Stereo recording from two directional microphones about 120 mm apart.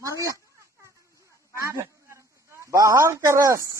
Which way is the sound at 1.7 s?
25° right (ahead or behind).